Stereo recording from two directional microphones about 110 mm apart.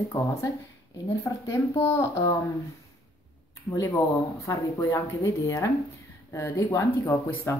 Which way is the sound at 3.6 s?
25° left (ahead or behind).